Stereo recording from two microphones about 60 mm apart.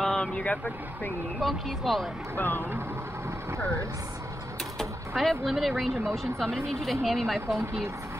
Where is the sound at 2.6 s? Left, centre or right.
Right.